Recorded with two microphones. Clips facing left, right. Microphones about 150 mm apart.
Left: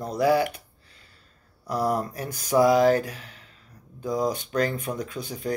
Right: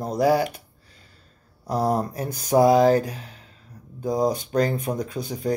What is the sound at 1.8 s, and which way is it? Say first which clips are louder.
Speech: right 2 dB; 30° right (ahead or behind).